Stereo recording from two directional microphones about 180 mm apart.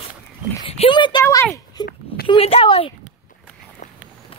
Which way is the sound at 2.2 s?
30° left (ahead or behind).